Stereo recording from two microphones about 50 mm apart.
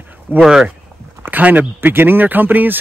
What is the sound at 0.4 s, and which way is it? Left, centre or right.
Speech, centre.